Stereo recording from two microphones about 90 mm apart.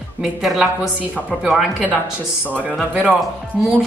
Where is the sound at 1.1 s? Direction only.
15° right (ahead or behind).